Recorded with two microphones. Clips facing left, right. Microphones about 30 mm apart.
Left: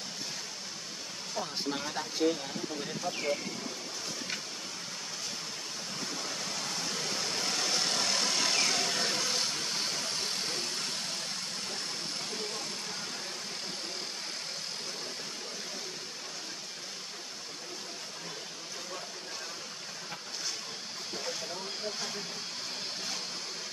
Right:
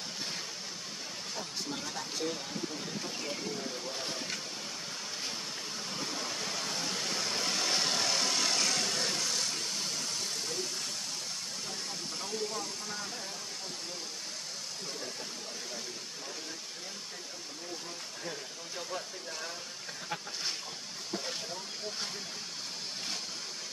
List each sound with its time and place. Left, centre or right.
1.4 s speech: left
5.9 s vehicle: centre; by 10.0 s left